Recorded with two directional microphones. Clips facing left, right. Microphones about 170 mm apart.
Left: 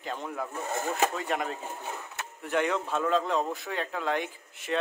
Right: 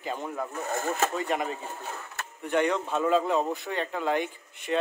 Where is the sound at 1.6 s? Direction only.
20° left (ahead or behind).